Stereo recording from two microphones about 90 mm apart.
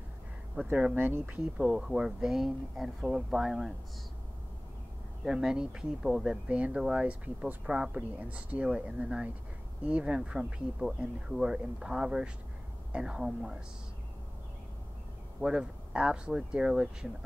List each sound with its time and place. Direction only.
0.7 s speech: 10° right (ahead or behind)
0.9 s speech: 25° right (ahead or behind)
1.6 s speech: 5° right (ahead or behind)
5.2 s speech: 5° right (ahead or behind)
15.4 s speech: 10° right (ahead or behind)